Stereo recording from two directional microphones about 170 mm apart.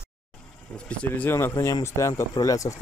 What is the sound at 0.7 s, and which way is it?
Speech, 5° left (ahead or behind).